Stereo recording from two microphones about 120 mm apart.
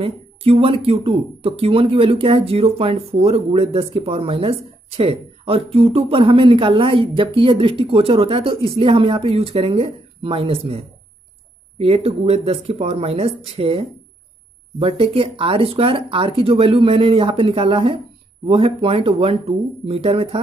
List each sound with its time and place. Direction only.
0.0 s speech: 50° right (ahead or behind)
11.8 s speech: 55° right (ahead or behind)